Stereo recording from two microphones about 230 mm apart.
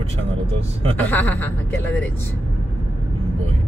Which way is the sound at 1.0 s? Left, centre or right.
Centre.